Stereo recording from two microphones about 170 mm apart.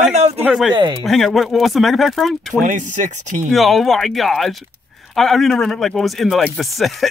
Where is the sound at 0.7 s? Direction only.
25° right (ahead or behind).